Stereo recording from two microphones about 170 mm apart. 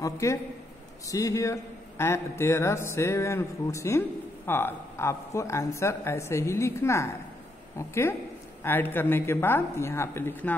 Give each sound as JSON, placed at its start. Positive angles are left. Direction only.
{"t": 0.0, "sound": "a man's voice", "side_deg": 20}